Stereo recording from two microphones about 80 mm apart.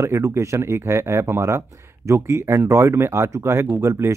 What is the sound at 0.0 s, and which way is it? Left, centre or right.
Speech, right.